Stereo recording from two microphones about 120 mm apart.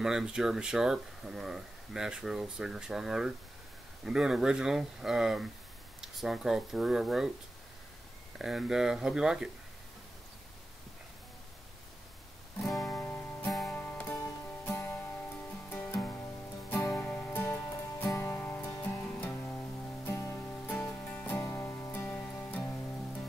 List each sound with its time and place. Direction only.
0.0 s speech: 5° right (ahead or behind)
8.4 s speech: 5° right (ahead or behind)
12.6 s music: centre (ahead or behind)
12.9 s music: 20° left (ahead or behind)
13.5 s music: centre (ahead or behind)
13.7 s music: 15° left (ahead or behind)
14.2 s music: 25° left (ahead or behind)
20.1 s music: 25° left (ahead or behind)
20.4 s music: 15° left (ahead or behind)